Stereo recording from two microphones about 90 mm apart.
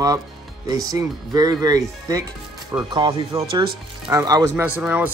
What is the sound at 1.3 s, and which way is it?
Speech, 45° right (ahead or behind).